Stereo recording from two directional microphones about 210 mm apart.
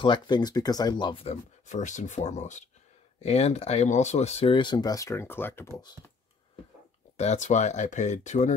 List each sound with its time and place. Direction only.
0.0 s speech: 20° left (ahead or behind)
7.2 s speech: 35° left (ahead or behind)